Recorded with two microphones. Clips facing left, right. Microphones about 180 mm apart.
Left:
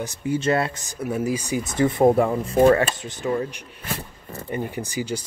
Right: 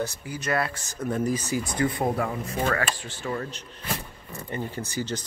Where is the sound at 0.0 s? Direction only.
25° left (ahead or behind).